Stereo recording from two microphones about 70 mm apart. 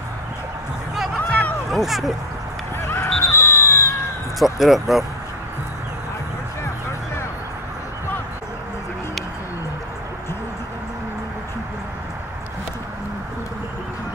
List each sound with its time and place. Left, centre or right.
1.1 s a sound: centre
1.7 s speech: centre
2.8 s honk: left
3.2 s screaming: left
4.4 s speech: centre